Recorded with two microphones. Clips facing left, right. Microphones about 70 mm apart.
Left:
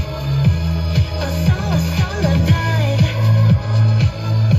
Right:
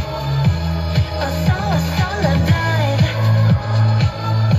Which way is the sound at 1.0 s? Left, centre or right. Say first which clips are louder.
Right 2 dB; right.